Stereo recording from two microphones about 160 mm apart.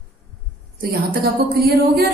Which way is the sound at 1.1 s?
70° right (ahead or behind).